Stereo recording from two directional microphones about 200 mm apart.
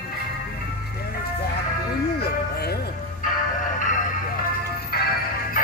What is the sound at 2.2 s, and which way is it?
Speech, 50° left (ahead or behind).